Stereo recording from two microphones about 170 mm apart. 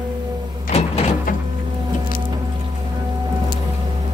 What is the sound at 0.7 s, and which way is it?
Sliding door, 40° left (ahead or behind).